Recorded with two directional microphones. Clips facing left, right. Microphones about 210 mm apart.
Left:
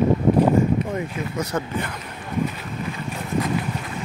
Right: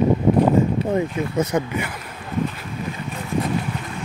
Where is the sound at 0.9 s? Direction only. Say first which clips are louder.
Right 5 dB; 25° right (ahead or behind).